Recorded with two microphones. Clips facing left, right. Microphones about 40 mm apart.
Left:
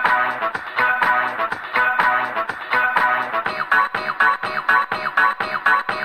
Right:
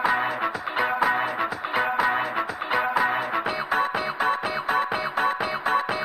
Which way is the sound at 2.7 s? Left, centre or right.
Left.